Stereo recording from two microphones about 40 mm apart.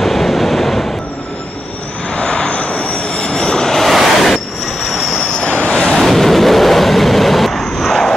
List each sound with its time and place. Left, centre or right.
0.0 s waves: centre
2.1 s vehicle: left; by 4.3 s centre
4.8 s train: centre
5.2 s vehicle: left
5.8 s vehicle: centre